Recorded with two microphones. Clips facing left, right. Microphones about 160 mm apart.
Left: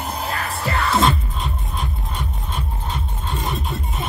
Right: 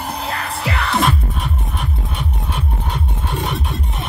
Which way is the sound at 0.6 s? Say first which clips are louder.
Even; 85° right.